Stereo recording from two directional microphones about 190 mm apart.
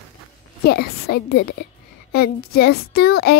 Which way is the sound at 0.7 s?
55° left (ahead or behind).